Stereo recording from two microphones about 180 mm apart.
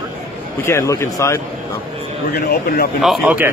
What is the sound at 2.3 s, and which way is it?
Speech, 60° left (ahead or behind).